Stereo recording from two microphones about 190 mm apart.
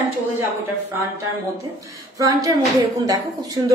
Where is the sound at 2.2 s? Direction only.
20° right (ahead or behind).